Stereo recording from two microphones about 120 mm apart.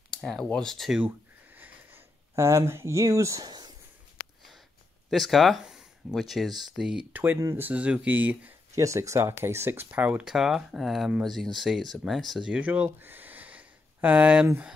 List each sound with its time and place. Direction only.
0.1 s speech: 5° left (ahead or behind)
1.0 s a sound: 15° right (ahead or behind); by 3.7 s 35° right (ahead or behind)
5.1 s speech: centre (ahead or behind)
7.3 s speech: 25° right (ahead or behind)
7.6 s speech: 10° right (ahead or behind)
8.7 s speech: 25° right (ahead or behind)